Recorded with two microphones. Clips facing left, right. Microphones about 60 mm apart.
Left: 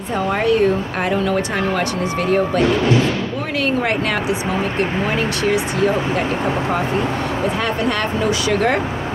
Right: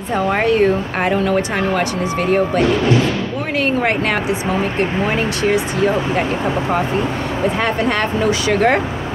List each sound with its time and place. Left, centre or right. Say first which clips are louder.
0.1 s speech: right 1 dB; right
7.6 s speech: right 2 dB; right